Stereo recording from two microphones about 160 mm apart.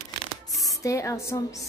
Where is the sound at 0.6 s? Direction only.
20° left (ahead or behind).